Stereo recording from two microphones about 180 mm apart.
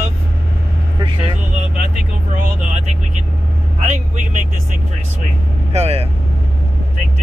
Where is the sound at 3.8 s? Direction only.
40° right (ahead or behind).